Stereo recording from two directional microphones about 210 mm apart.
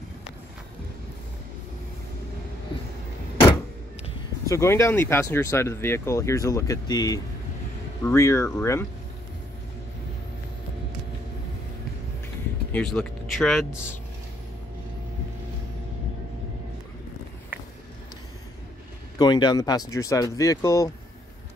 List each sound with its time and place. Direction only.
4.5 s speech: 15° left (ahead or behind)
12.7 s speech: 5° left (ahead or behind)
17.5 s a sound: 10° right (ahead or behind)
19.1 s speech: 20° left (ahead or behind)